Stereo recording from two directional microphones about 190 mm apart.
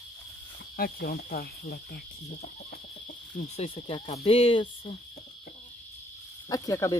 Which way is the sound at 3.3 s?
30° left (ahead or behind).